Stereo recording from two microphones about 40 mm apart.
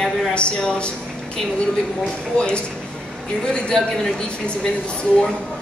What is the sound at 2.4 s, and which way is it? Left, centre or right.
A woman's voice, left.